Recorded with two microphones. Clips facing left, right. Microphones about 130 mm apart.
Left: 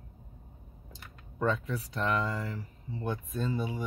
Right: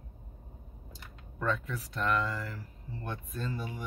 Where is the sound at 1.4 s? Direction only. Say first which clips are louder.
Left 3 dB; 25° left (ahead or behind).